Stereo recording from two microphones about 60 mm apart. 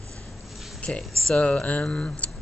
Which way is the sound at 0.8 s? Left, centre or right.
Centre.